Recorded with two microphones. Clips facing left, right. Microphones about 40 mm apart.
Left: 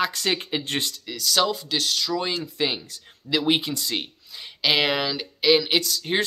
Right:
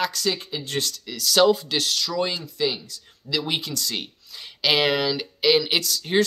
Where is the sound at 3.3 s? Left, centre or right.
Left.